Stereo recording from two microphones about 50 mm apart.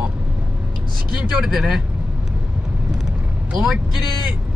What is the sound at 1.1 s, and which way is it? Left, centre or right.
Speech, centre.